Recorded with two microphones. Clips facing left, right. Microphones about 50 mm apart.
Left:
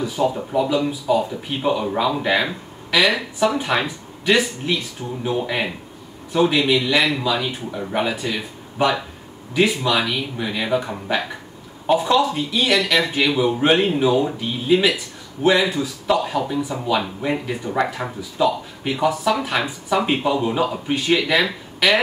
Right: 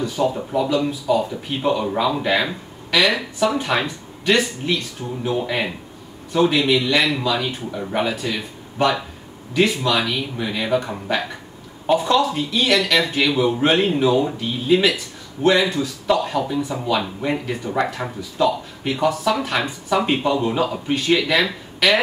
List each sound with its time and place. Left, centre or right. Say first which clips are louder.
0.0 s speech: even; centre